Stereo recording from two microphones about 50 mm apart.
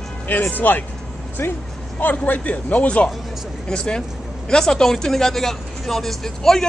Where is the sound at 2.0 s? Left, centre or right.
Left.